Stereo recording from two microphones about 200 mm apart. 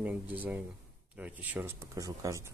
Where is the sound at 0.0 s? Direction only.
5° right (ahead or behind).